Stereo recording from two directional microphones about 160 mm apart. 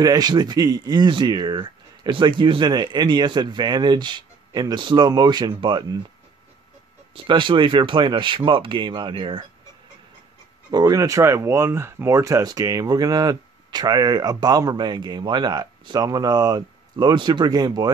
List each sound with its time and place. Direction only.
0.0 s speech: 25° right (ahead or behind)
7.2 s speech: 30° right (ahead or behind)
10.7 s speech: 20° right (ahead or behind)